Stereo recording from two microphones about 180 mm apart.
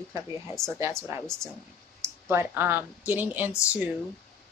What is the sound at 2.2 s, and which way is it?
A woman's voice, 10° right (ahead or behind).